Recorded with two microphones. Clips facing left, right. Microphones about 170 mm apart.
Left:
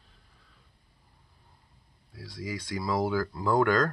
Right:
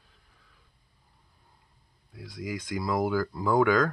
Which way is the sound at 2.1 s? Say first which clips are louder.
Right 1 dB; centre (ahead or behind).